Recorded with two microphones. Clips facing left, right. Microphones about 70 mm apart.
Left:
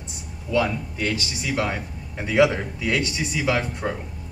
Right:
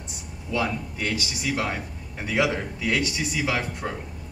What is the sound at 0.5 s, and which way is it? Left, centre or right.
Speech, centre.